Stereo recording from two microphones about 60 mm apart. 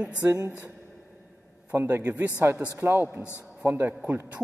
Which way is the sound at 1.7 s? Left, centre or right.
Right.